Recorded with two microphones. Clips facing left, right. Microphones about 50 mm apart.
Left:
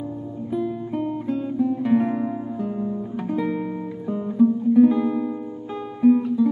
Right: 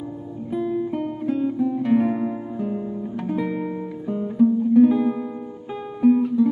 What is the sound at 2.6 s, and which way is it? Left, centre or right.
Guitar, right.